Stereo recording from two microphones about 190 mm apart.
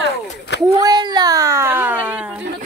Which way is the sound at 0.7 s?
20° right (ahead or behind).